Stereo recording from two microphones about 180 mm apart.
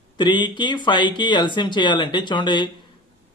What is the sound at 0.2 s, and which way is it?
Speech, 25° left (ahead or behind).